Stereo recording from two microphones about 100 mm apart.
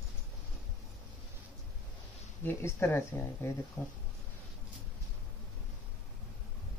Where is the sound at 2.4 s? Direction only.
20° left (ahead or behind).